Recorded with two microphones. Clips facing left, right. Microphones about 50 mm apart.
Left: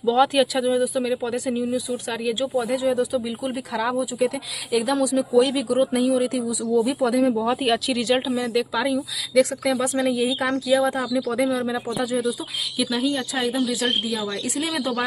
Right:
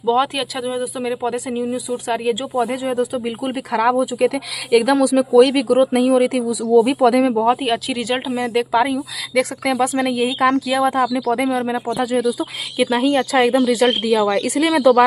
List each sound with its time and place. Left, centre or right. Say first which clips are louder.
0.0 s speech: right 1 dB; centre
0.4 s speech: left 4 dB; centre
0.7 s speech: left 1 dB; centre
1.7 s speech: right 4 dB; right
3.7 s speech: right 9 dB; right
4.6 s speech: right 7 dB; right
5.3 s speech: right 7 dB; right
6.7 s speech: right 8 dB; right
7.4 s speech: right 4 dB; centre
8.4 s speech: right 6 dB; right
10.4 s speech: right 6 dB; right
10.8 s speech: right 5 dB; right
14.3 s speech: right 9 dB; right